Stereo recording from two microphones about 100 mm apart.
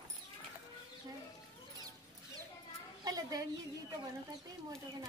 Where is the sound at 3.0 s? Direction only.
40° right (ahead or behind).